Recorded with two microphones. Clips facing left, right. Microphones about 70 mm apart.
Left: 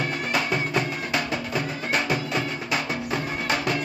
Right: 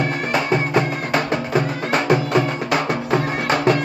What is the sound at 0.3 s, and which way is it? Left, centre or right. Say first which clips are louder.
Music: right 6 dB; right.